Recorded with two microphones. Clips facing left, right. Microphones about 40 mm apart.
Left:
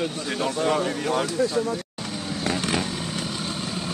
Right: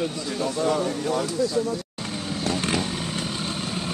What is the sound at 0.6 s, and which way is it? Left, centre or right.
Speech, left.